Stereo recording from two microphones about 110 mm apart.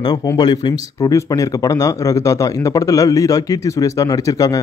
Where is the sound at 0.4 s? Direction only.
40° left (ahead or behind).